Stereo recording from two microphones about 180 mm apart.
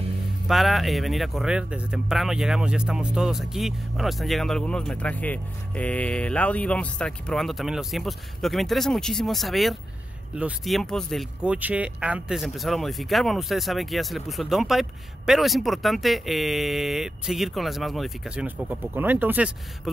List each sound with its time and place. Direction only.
0.5 s speech: centre (ahead or behind)